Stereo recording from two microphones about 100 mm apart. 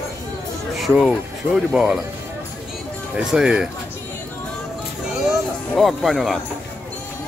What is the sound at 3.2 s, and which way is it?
Speech, 5° right (ahead or behind).